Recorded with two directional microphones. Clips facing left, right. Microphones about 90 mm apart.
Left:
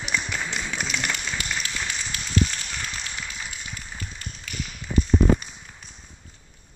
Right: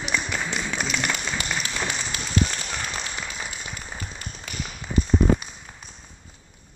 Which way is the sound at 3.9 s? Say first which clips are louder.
Right 2 dB; 25° right (ahead or behind).